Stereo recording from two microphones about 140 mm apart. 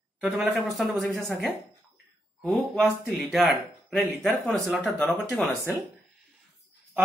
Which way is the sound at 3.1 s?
5° right (ahead or behind).